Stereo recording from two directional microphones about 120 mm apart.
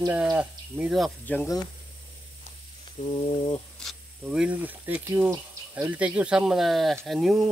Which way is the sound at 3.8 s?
5° right (ahead or behind).